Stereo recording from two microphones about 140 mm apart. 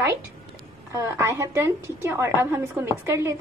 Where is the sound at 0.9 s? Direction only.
20° right (ahead or behind).